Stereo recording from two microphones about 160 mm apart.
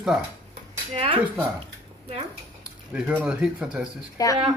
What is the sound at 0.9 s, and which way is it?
Speech, 35° right (ahead or behind).